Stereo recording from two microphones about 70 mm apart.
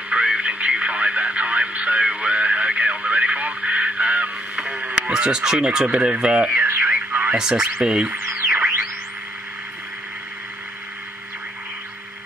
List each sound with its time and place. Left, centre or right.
0.1 s radio: centre
6.9 s radio: right
7.3 s speech: centre
8.1 s a sound: right